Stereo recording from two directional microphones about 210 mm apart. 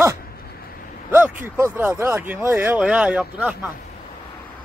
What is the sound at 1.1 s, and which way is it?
Speech, 10° right (ahead or behind).